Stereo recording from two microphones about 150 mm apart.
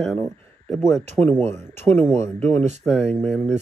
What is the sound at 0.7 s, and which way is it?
Speech, 20° left (ahead or behind).